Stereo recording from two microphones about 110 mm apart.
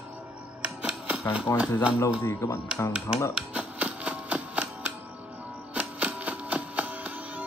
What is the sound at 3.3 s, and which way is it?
Music, 10° right (ahead or behind).